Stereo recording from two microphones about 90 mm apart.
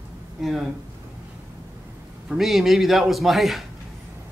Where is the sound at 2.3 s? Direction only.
Centre (ahead or behind).